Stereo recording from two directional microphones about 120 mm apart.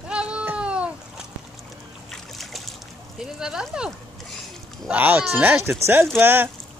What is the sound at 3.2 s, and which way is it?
Speech, 5° right (ahead or behind).